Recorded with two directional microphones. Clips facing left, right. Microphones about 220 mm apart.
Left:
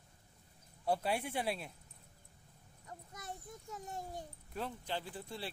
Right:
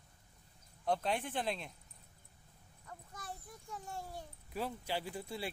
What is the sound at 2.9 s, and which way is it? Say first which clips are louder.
A child's voice: left 1 dB; 20° left (ahead or behind).